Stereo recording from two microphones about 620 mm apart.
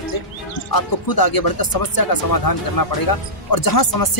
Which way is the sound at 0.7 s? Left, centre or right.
Left.